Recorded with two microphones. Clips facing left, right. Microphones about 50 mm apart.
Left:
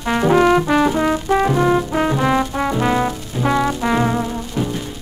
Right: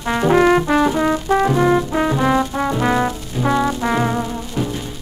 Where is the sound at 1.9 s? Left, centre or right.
Centre.